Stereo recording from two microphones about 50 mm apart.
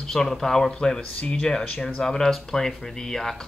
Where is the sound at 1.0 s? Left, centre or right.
Left.